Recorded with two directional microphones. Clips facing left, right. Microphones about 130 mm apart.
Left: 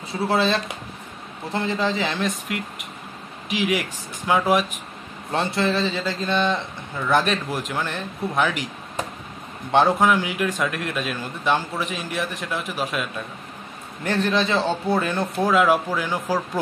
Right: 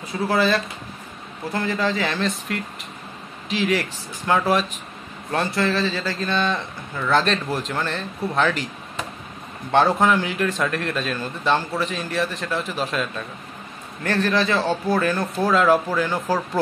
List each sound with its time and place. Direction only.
0.1 s a man's voice: 25° left (ahead or behind)
5.3 s a man's voice: 25° left (ahead or behind)
9.7 s a man's voice: 15° left (ahead or behind)
14.0 s speech: 20° left (ahead or behind)
15.4 s a man's voice: 10° left (ahead or behind)